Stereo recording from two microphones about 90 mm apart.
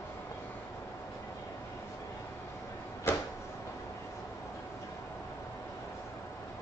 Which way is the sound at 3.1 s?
25° left (ahead or behind).